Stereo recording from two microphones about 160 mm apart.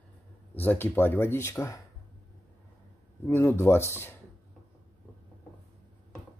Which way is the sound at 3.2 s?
15° left (ahead or behind).